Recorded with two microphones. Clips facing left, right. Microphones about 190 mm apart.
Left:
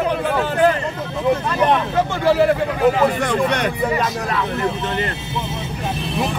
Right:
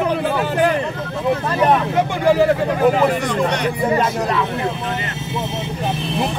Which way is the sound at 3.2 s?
55° left (ahead or behind).